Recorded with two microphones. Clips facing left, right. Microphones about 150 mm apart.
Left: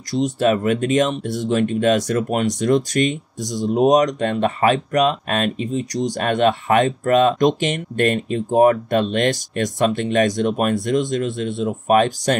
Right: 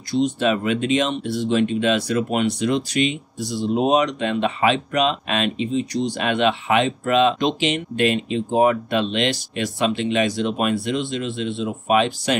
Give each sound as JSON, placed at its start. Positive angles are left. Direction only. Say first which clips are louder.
{"t": 0.1, "sound": "speech", "louder": "left 2 dB", "side_deg": 40}